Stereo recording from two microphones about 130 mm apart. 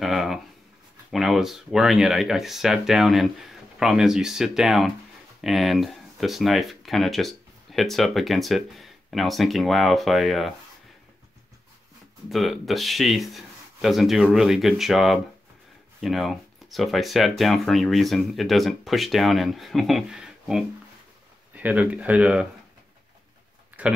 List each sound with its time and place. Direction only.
0.0 s writing: centre (ahead or behind)
1.1 s speech: centre (ahead or behind)
12.3 s speech: centre (ahead or behind)
23.8 s speech: 10° right (ahead or behind)